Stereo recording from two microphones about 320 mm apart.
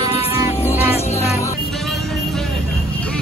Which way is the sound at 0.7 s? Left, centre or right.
Centre.